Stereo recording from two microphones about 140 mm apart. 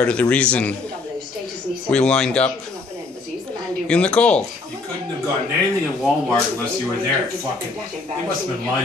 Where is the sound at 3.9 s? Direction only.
5° left (ahead or behind).